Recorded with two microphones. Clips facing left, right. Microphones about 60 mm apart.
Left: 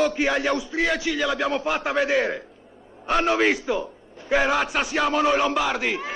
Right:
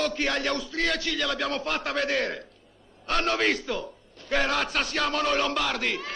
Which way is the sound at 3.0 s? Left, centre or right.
Centre.